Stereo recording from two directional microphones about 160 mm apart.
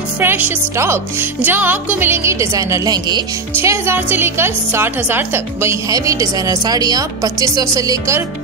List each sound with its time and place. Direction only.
0.2 s a woman's voice: 15° right (ahead or behind)